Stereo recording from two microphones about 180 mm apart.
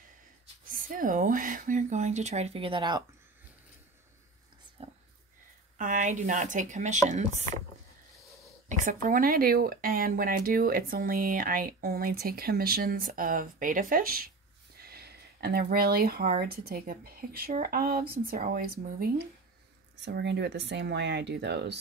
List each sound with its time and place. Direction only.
0.7 s speech: 50° right (ahead or behind); by 3.0 s 25° right (ahead or behind)
4.8 s a sound: 30° right (ahead or behind)
5.8 s speech: 45° right (ahead or behind)
8.8 s speech: 50° right (ahead or behind)
20.1 s speech: 70° right (ahead or behind)